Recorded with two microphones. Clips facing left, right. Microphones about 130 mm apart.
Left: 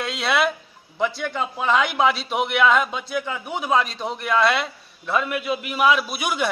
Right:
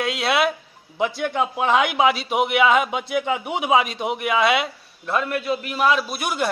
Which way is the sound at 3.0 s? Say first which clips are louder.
Right 4 dB; 60° right (ahead or behind).